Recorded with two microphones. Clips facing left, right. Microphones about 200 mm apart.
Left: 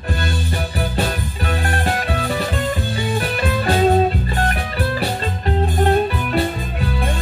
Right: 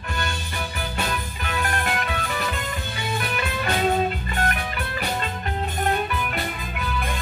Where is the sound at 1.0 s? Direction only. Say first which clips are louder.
Left 4 dB; 35° left (ahead or behind).